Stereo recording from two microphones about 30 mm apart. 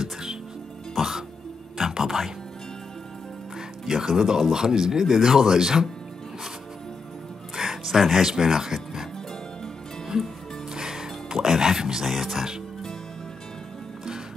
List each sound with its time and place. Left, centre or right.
0.0 s music: right
0.9 s music: centre
3.8 s speech: centre
7.5 s music: centre
8.2 s speech: centre
10.1 s speech: right
10.7 s music: centre
12.1 s speech: centre